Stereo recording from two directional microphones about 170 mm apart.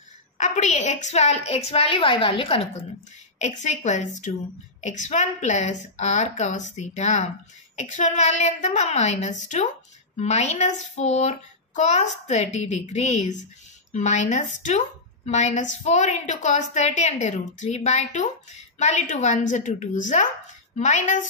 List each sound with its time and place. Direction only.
0.4 s a woman's voice: 45° left (ahead or behind)